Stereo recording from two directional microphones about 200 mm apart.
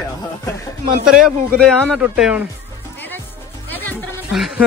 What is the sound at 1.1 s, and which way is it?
Speech, centre (ahead or behind).